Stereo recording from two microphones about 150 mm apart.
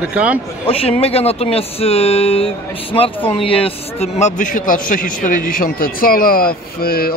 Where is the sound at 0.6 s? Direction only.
40° left (ahead or behind).